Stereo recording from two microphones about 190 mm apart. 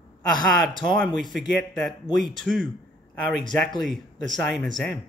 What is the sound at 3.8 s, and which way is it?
Speech, centre (ahead or behind).